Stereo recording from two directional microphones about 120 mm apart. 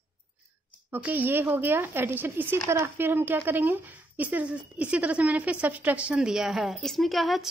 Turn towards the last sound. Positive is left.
turn(degrees=0)  # may be behind; listen again after turning